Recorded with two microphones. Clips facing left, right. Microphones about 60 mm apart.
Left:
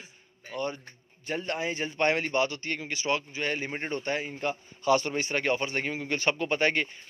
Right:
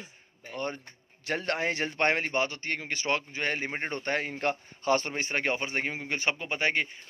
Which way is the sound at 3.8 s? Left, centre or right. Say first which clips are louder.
Even; right.